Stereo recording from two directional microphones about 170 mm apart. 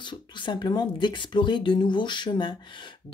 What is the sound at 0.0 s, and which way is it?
Speech, 25° left (ahead or behind).